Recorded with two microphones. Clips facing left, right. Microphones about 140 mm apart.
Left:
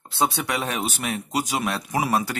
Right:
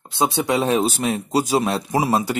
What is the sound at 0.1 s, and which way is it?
Speech, 20° right (ahead or behind).